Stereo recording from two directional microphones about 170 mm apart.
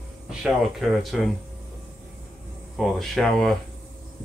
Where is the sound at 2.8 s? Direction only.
Centre (ahead or behind).